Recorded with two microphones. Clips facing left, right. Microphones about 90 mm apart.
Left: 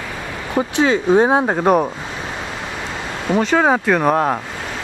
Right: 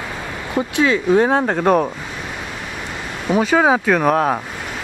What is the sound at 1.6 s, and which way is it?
Speech, 5° left (ahead or behind).